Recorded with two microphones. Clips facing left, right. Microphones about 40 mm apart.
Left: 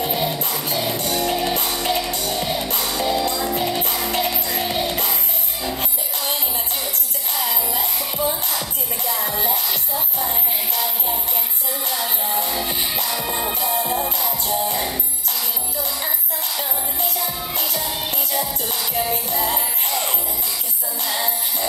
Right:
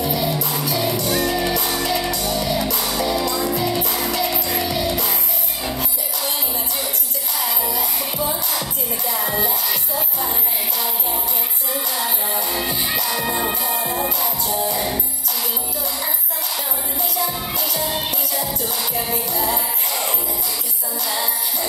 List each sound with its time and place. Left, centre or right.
1.2 s music: left
4.1 s music: left
19.3 s music: left